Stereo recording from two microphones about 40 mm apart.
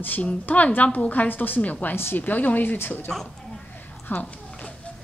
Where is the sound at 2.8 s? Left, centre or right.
Left.